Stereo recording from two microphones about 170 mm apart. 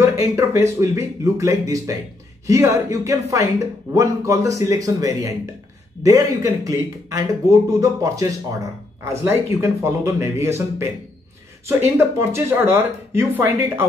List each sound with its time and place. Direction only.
0.0 s speech: 15° right (ahead or behind)
11.8 s speech: 15° right (ahead or behind)